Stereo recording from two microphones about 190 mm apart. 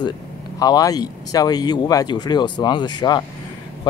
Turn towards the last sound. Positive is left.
turn(degrees=20)  # may be behind; listen again after turning